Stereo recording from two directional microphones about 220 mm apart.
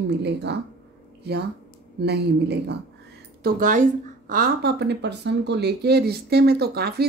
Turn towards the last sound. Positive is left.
turn(degrees=-45)  # may be behind; listen again after turning